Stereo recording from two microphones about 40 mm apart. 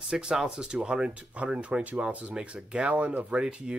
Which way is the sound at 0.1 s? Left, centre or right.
Centre.